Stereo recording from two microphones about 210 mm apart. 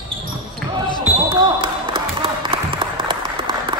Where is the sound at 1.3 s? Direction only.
20° right (ahead or behind).